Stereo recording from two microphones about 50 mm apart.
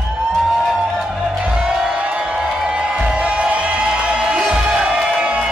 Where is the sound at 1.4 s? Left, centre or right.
Right.